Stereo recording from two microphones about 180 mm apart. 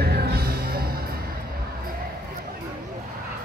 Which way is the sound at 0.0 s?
60° right (ahead or behind).